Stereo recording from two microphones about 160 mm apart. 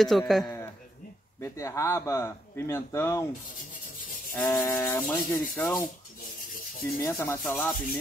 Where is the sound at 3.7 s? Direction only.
60° left (ahead or behind).